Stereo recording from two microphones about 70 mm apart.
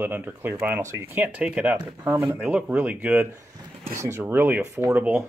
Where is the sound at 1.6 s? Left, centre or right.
Right.